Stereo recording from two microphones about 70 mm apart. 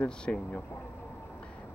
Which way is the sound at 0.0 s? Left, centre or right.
Centre.